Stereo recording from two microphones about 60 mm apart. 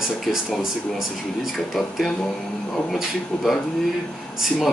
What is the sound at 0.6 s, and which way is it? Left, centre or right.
Speech, centre.